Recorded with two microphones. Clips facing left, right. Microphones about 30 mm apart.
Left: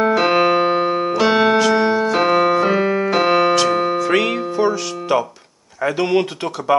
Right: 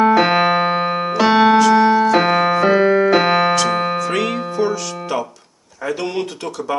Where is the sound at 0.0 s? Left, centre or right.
Centre.